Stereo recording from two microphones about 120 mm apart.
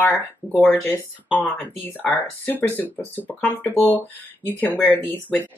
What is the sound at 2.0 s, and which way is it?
Speech, 15° left (ahead or behind).